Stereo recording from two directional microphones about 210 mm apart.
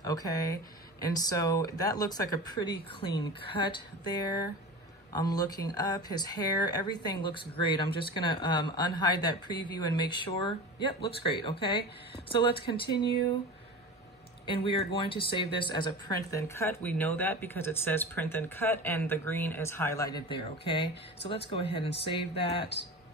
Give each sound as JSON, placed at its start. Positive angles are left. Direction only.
{"t": 0.0, "sound": "speech", "side_deg": 15}
{"t": 14.4, "sound": "speech", "side_deg": 25}
{"t": 22.6, "sound": "speech", "side_deg": 55}